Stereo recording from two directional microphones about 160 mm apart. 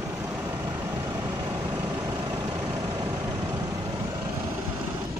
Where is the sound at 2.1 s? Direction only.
20° right (ahead or behind).